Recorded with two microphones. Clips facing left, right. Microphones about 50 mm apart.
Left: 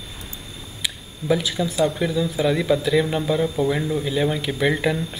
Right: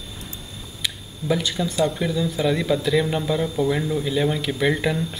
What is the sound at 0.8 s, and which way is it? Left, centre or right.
Speech, centre.